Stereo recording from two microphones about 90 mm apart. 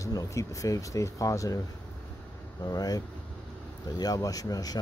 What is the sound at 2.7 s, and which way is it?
Speech, 45° left (ahead or behind).